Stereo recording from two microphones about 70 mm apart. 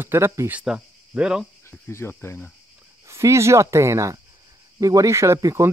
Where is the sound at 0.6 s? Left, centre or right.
Centre.